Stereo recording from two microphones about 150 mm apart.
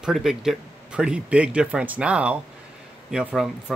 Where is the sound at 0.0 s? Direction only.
5° right (ahead or behind).